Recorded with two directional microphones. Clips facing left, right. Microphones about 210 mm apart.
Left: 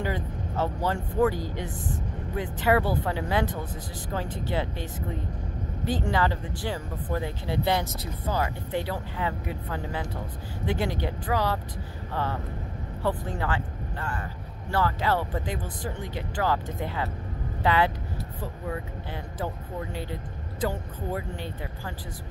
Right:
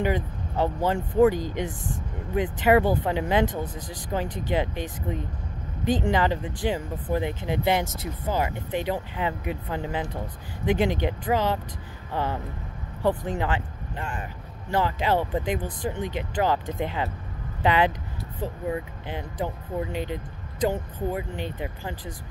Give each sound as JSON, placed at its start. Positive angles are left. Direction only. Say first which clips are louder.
{"t": 0.0, "sound": "speech", "louder": "right 4 dB", "side_deg": -15}